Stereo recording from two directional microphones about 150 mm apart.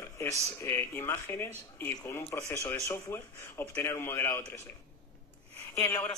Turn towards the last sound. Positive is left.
turn(degrees=20)  # may be behind; listen again after turning